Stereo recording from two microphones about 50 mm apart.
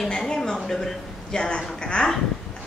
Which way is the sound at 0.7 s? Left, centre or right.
Centre.